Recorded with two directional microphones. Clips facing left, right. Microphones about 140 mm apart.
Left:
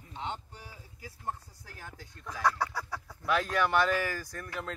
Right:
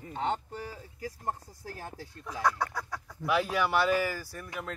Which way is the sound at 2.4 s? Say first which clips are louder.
Even; centre (ahead or behind).